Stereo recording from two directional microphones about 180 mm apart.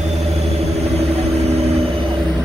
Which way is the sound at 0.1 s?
35° right (ahead or behind).